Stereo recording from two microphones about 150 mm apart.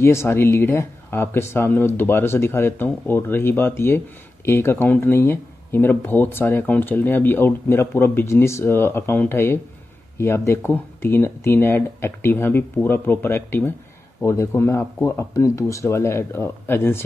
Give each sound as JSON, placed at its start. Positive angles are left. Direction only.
{"t": 0.0, "sound": "speech", "side_deg": 15}